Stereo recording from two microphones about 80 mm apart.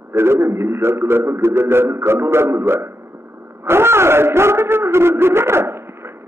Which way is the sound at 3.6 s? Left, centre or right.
Right.